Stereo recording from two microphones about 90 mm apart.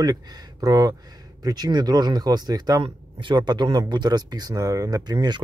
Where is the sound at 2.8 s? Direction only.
65° right (ahead or behind); by 5.4 s 50° right (ahead or behind).